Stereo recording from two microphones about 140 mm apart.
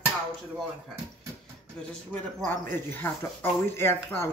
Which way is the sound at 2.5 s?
15° left (ahead or behind).